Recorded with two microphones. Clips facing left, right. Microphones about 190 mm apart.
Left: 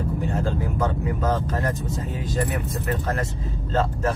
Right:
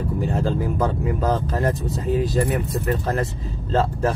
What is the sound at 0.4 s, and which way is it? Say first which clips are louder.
Vehicle: right 4 dB; 30° right (ahead or behind).